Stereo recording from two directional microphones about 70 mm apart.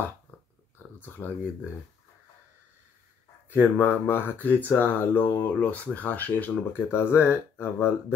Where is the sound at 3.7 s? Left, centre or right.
Left.